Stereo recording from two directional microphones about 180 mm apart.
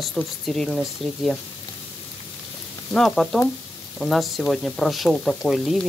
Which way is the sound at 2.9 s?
Centre (ahead or behind).